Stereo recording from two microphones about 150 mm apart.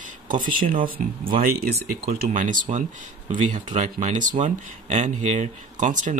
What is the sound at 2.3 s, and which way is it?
Speech, 60° right (ahead or behind).